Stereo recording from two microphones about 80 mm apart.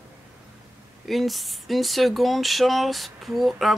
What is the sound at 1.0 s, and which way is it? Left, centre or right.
Speech, centre.